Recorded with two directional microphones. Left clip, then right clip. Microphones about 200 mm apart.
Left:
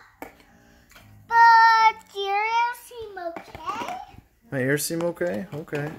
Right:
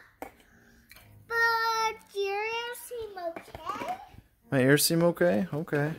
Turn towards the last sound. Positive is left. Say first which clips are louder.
# right 1 dB
turn(degrees=-40)  # may be behind; listen again after turning